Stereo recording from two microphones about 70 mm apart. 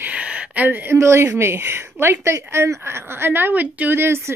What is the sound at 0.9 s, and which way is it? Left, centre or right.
A woman's voice, right.